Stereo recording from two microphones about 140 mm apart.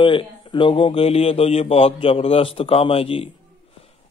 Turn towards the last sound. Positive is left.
turn(degrees=40)  # may be behind; listen again after turning